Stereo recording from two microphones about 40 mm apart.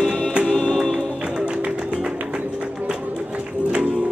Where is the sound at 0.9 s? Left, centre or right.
Right.